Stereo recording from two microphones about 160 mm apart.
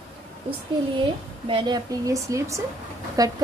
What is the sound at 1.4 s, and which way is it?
A woman's voice, 30° right (ahead or behind).